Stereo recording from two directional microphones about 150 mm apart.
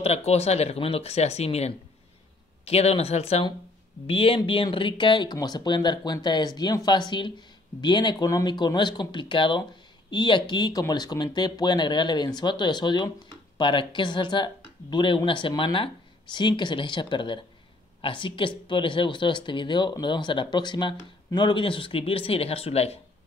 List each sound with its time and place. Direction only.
0.0 s speech: 45° left (ahead or behind)